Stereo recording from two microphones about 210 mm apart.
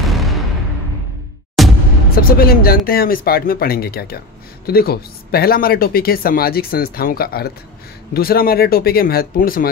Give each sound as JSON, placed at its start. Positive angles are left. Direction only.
{"t": 0.0, "sound": "a sound", "side_deg": 0}
{"t": 1.6, "sound": "music", "side_deg": 0}
{"t": 2.2, "sound": "speech", "side_deg": 45}